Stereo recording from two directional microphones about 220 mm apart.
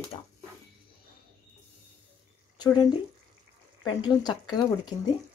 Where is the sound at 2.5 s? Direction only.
20° left (ahead or behind).